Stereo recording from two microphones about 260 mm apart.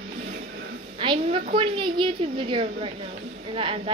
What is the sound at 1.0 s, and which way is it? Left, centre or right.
A woman's voice, centre.